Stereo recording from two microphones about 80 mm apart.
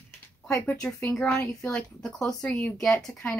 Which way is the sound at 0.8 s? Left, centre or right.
Centre.